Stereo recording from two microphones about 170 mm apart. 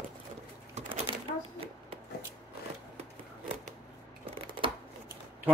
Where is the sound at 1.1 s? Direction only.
30° right (ahead or behind).